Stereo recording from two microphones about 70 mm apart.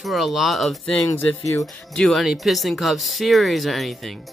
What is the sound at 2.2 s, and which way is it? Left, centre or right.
Speech, centre.